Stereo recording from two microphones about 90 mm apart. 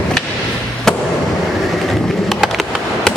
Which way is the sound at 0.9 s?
5° left (ahead or behind).